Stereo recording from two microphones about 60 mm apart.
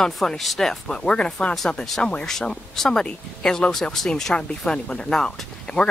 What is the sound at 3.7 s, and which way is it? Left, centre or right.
Speech, centre.